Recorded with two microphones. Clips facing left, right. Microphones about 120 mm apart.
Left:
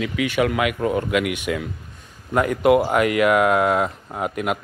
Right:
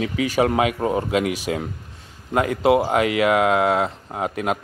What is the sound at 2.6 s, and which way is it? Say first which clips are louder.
Speech: left 1 dB; 25° right (ahead or behind).